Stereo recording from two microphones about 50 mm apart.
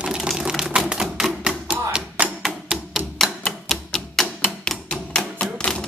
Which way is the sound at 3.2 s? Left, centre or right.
Centre.